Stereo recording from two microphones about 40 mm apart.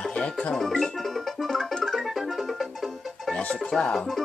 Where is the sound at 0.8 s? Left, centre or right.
Centre.